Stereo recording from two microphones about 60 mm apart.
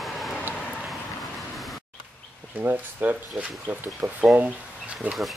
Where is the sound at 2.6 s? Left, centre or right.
Right.